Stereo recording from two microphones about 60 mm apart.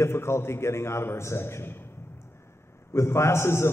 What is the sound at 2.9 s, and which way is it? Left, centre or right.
Speech, left.